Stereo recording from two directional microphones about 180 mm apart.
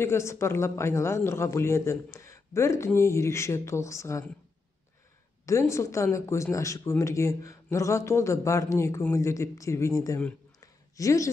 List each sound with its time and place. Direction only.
0.0 s speech: 15° left (ahead or behind)
5.4 s speech: 15° left (ahead or behind)
10.6 s a sound: 15° left (ahead or behind)